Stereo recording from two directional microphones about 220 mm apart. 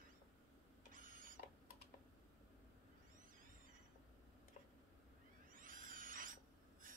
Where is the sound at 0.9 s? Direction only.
40° right (ahead or behind).